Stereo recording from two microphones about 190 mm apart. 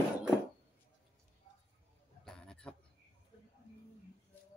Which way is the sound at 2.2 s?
5° left (ahead or behind).